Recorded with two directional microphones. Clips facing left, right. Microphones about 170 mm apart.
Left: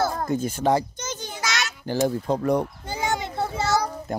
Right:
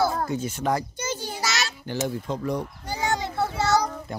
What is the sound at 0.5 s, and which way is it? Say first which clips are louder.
Speech: left 7 dB; 30° left (ahead or behind).